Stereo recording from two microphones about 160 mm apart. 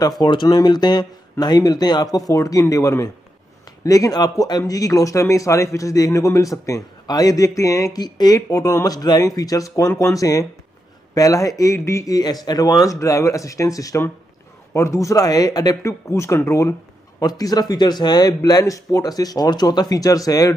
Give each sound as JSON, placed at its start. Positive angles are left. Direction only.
{"t": 0.2, "sound": "a man's voice", "side_deg": 25}